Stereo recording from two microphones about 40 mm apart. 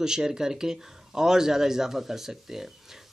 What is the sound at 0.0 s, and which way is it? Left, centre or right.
Speech, centre.